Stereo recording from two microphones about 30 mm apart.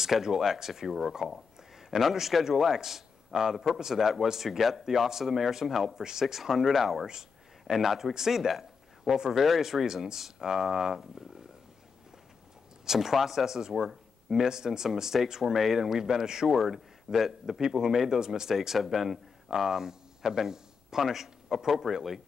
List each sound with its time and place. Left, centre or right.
0.0 s speech: centre
3.5 s speech: centre
7.1 s a sound: right
7.7 s speech: centre
12.8 s speech: centre
16.0 s speech: right
18.8 s a man's voice: centre